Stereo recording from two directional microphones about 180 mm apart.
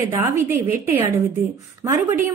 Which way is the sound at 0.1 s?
15° right (ahead or behind).